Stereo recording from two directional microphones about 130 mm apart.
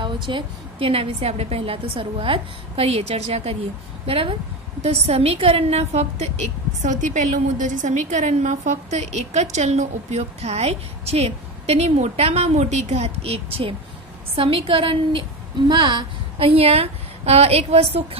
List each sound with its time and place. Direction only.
0.0 s a woman's voice: 40° right (ahead or behind); by 6.3 s 60° right (ahead or behind)
6.8 s a woman's voice: 70° right (ahead or behind); by 18.0 s 55° right (ahead or behind)